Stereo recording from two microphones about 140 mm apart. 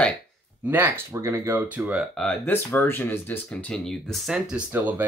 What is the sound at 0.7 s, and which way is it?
Speech, 15° right (ahead or behind).